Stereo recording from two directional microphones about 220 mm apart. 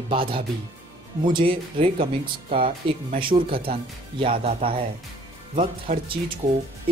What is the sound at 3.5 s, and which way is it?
Speech, 40° right (ahead or behind).